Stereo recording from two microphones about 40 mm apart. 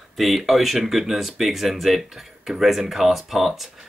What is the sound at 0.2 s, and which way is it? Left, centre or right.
Speech, centre.